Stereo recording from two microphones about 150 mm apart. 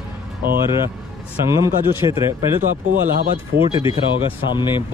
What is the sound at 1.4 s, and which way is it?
Speech, 20° right (ahead or behind).